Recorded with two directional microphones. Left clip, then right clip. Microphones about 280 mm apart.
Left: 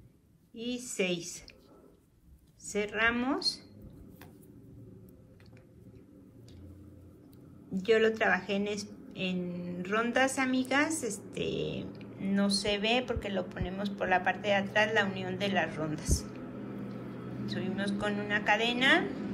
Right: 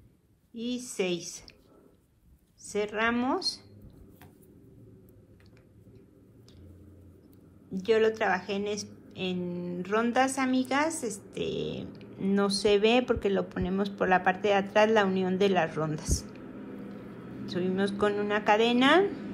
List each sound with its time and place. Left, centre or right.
0.6 s a woman's voice: centre
2.7 s a woman's voice: centre
7.8 s a woman's voice: centre
16.5 s a sound: centre
17.5 s a woman's voice: centre